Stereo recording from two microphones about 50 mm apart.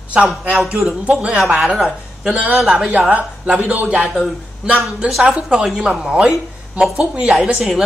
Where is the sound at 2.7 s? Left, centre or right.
Centre.